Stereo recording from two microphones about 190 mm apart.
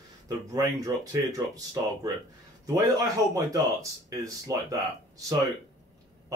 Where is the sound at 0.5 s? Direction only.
20° right (ahead or behind).